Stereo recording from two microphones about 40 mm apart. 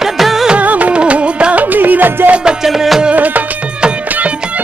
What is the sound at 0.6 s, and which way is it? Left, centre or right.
Music, right.